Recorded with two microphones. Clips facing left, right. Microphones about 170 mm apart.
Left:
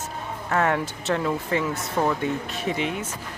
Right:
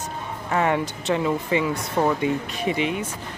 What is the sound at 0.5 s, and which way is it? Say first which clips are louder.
Speech: right 1 dB; 5° right (ahead or behind).